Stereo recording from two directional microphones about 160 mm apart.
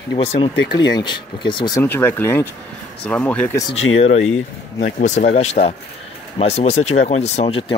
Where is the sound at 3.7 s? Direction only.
40° left (ahead or behind).